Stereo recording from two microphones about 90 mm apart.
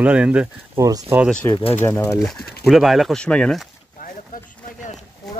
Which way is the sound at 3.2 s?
10° left (ahead or behind).